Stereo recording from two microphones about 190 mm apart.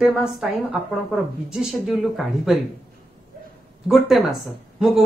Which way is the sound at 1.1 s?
5° right (ahead or behind).